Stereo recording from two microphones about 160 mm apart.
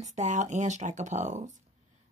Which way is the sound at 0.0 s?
50° right (ahead or behind).